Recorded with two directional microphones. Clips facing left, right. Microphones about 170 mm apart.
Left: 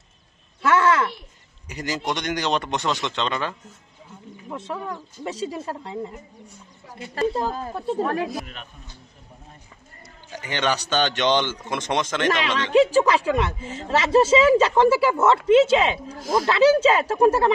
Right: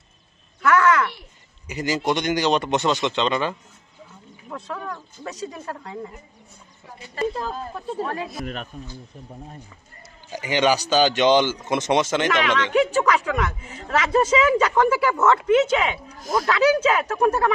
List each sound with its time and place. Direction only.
0.6 s a sound: 30° left (ahead or behind)
1.7 s a man's voice: centre (ahead or behind)
4.5 s speech: 20° left (ahead or behind)
7.3 s speech: 40° left (ahead or behind)
8.1 s speech: 65° left (ahead or behind)
10.3 s speech: 10° right (ahead or behind)
12.3 s speech: 30° left (ahead or behind)